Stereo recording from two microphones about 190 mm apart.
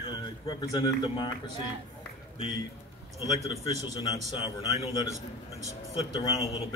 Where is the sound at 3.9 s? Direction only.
20° left (ahead or behind).